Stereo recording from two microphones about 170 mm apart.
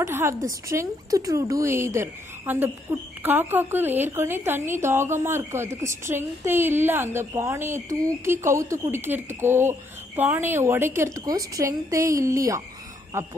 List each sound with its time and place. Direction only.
0.0 s a woman's voice: 20° right (ahead or behind)